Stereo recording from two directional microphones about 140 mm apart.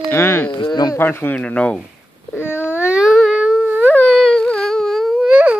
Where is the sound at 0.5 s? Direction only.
30° left (ahead or behind).